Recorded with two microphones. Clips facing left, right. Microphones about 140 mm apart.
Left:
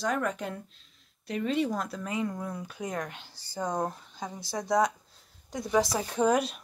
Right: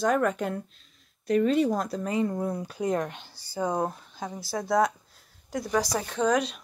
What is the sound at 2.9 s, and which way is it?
Speech, 20° right (ahead or behind).